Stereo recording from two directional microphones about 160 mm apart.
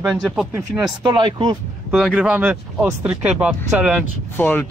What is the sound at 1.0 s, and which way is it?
Speech, 25° right (ahead or behind).